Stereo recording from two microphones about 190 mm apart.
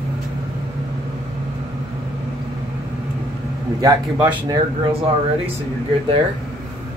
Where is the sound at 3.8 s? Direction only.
10° right (ahead or behind).